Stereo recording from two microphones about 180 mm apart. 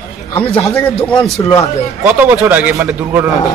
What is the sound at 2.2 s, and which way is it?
A man's voice, 10° right (ahead or behind).